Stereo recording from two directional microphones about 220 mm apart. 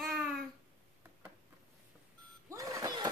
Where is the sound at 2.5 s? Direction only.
15° right (ahead or behind).